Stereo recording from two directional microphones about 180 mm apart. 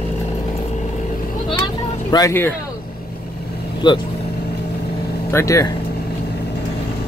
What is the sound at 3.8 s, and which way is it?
Speech, 25° left (ahead or behind).